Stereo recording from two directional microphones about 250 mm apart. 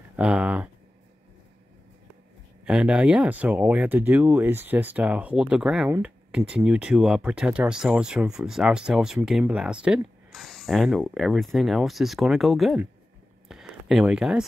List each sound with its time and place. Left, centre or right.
0.1 s speech: centre
2.6 s speech: centre
13.5 s a sound: centre